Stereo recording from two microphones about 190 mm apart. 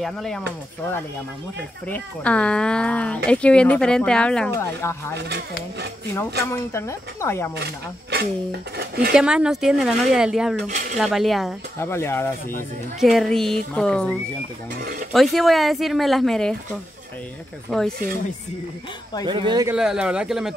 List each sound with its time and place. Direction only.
0.0 s speech: centre (ahead or behind)
1.9 s speech: 5° left (ahead or behind)
5.1 s speech: 60° right (ahead or behind)
6.4 s speech: 15° left (ahead or behind)
8.1 s speech: 60° right (ahead or behind)
9.1 s speech: 5° right (ahead or behind)
11.8 s speech: 15° left (ahead or behind)
13.0 s speech: centre (ahead or behind)
15.1 s speech: centre (ahead or behind)
17.6 s speech: centre (ahead or behind)
19.2 s speech: 25° right (ahead or behind)
19.7 s speech: 5° right (ahead or behind)